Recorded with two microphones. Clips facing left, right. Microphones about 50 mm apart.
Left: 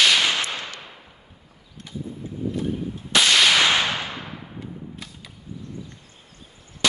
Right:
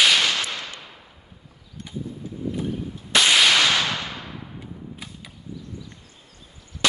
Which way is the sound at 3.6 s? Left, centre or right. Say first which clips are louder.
Left 1 dB; left.